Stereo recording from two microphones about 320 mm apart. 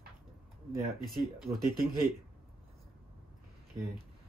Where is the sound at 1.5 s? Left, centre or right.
Centre.